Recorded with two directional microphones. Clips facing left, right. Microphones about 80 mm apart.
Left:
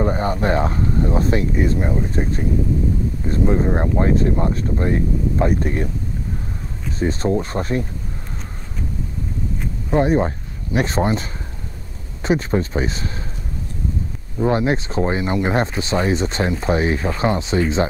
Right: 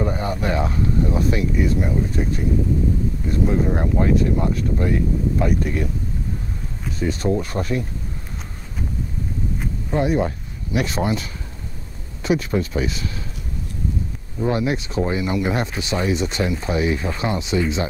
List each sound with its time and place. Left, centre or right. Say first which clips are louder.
0.0 s speech: left 3 dB; left
7.0 s speech: left 2 dB; left
9.8 s speech: left 3 dB; left
14.4 s speech: left 3 dB; left